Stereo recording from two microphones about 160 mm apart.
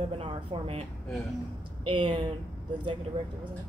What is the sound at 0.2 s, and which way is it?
Speech, 35° right (ahead or behind).